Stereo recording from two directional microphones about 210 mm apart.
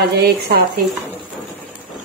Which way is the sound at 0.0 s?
50° right (ahead or behind).